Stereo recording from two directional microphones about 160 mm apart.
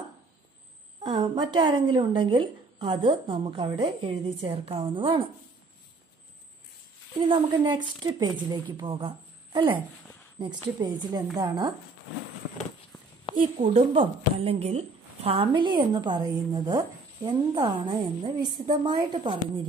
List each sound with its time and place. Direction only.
1.1 s a woman's voice: 25° right (ahead or behind)
7.2 s a woman's voice: 35° right (ahead or behind)
13.6 s a woman's voice: 40° right (ahead or behind)